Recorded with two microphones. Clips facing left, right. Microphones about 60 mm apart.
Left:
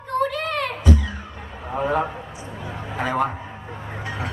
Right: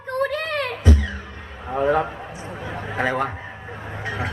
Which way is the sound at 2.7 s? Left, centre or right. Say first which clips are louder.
Right 2 dB; right.